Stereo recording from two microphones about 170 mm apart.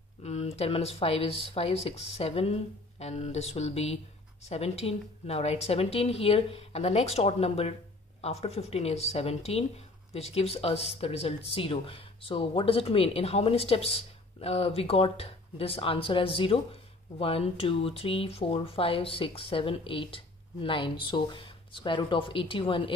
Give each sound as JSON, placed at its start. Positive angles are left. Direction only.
{"t": 0.2, "sound": "speech", "side_deg": 40}